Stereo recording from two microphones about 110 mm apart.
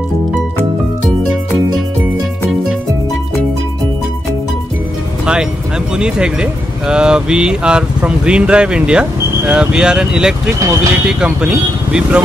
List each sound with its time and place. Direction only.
5.2 s music: 5° right (ahead or behind)
5.9 s speech: 10° right (ahead or behind)
10.6 s speech: 30° right (ahead or behind)
11.1 s speech: 10° right (ahead or behind)